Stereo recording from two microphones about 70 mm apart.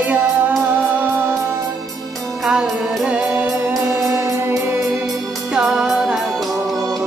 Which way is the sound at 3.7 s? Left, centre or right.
Right.